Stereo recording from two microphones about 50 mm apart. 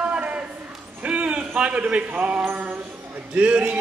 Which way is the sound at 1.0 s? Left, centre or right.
Right.